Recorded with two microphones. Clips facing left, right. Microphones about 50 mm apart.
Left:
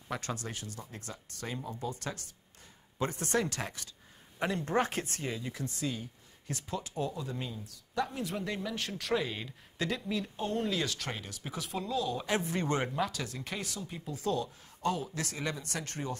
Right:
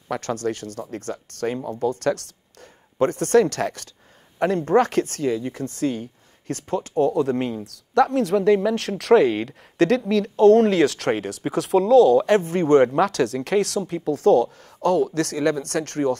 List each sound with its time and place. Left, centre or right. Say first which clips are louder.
0.1 s speech: right 12 dB; right
3.0 s speech: right 14 dB; right
12.3 s speech: right 14 dB; right
12.8 s speech: right 15 dB; right